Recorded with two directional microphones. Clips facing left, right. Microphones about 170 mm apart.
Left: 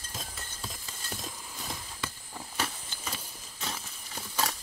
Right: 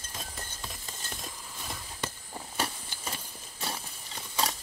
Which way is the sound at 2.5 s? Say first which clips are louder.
Right 1 dB; 30° right (ahead or behind).